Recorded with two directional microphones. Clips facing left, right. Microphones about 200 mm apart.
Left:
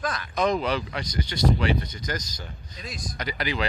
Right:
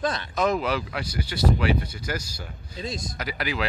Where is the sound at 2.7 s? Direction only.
25° right (ahead or behind).